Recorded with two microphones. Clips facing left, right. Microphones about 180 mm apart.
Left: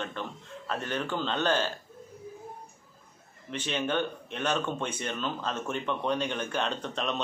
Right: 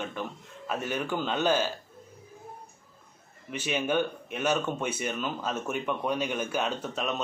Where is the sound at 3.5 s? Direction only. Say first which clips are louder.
Right 2 dB; 10° right (ahead or behind).